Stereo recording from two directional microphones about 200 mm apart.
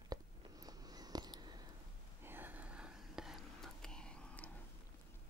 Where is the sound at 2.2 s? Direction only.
10° right (ahead or behind); by 4.4 s 5° left (ahead or behind).